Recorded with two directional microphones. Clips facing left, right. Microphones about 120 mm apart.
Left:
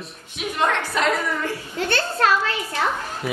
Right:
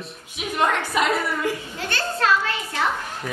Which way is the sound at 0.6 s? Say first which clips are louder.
Right 1 dB; 10° right (ahead or behind).